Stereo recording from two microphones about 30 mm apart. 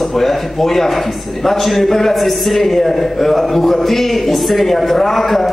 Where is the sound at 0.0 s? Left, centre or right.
Centre.